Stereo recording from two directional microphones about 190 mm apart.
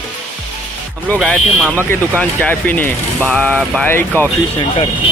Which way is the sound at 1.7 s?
10° left (ahead or behind).